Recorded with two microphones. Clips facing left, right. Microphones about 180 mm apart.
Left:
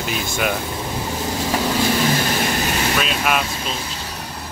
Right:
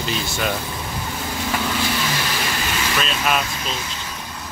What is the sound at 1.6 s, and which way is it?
Vehicle, 35° left (ahead or behind).